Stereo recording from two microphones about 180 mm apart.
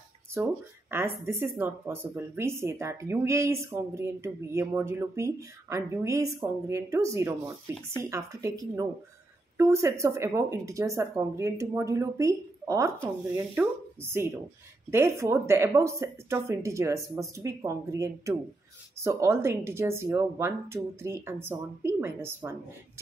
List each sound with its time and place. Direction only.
0.3 s speech: 10° right (ahead or behind)